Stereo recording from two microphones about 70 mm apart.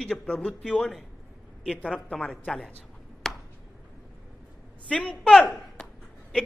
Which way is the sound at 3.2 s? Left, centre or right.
Centre.